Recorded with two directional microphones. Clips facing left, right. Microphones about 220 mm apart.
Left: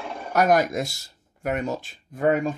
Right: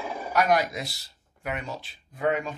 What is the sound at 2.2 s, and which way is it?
Speech, 50° left (ahead or behind).